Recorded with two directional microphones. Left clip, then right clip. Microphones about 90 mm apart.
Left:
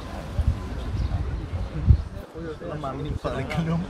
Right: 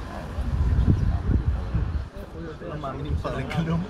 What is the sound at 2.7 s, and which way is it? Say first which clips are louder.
Speech: even; 15° right (ahead or behind).